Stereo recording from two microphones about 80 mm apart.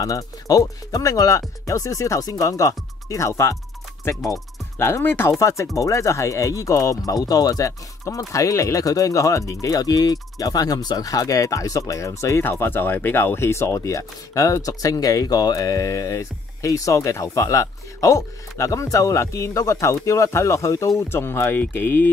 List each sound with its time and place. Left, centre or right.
0.0 s speech: left
5.4 s speech: left
21.1 s speech: left